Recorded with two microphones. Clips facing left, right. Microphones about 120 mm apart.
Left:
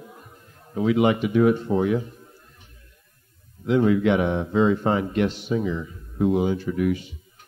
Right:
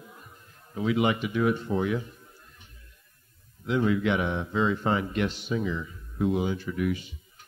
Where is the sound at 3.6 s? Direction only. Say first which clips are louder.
Left 6 dB; 55° left (ahead or behind).